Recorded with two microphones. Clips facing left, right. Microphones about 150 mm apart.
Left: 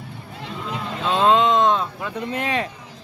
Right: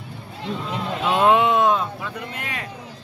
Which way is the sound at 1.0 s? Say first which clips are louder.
Even; 10° right (ahead or behind).